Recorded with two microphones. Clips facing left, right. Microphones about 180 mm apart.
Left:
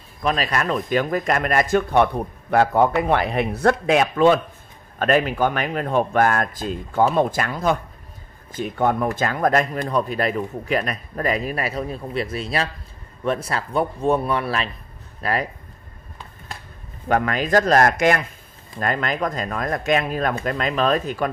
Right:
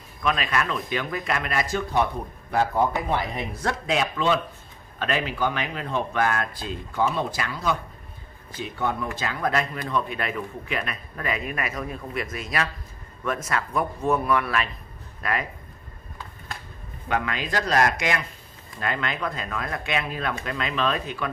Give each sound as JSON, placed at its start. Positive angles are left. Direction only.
{"t": 0.2, "sound": "a man's voice", "side_deg": 40}
{"t": 17.1, "sound": "speech", "side_deg": 45}